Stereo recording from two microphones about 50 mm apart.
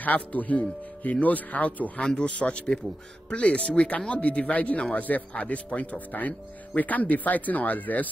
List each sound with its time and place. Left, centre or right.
0.0 s speech: left